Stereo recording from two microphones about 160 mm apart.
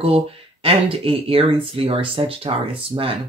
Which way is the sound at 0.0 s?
35° right (ahead or behind).